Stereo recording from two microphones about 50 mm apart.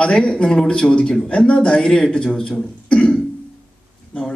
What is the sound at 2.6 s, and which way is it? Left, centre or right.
Beatboxing, left.